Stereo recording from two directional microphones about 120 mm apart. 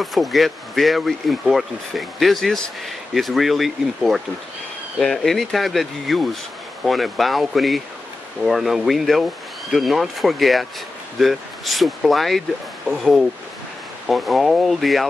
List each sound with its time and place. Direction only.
0.0 s speech: centre (ahead or behind)